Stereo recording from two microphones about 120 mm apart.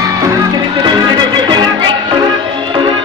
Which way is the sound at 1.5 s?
40° right (ahead or behind).